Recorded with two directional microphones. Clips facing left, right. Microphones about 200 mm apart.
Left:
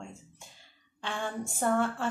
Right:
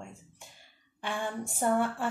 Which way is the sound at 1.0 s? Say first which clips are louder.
Right 1 dB; 15° right (ahead or behind).